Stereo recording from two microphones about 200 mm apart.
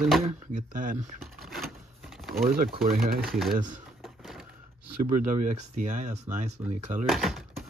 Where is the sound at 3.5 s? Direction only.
40° right (ahead or behind).